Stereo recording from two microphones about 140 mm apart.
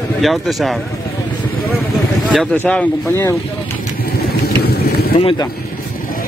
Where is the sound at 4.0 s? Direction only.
90° left.